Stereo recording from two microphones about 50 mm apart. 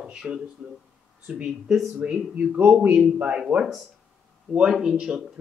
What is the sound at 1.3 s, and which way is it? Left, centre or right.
Speech, right.